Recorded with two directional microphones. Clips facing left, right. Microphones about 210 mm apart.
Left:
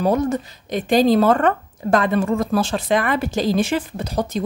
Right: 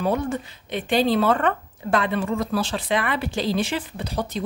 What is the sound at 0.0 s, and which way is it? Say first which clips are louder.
Speech: left 5 dB; 40° left (ahead or behind).